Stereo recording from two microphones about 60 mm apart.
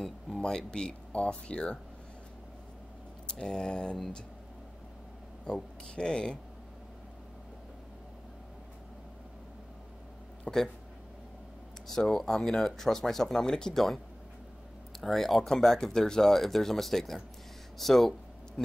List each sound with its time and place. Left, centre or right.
0.0 s speech: centre
3.3 s speech: centre
5.4 s speech: centre
10.5 s speech: centre
11.9 s speech: centre
15.0 s speech: centre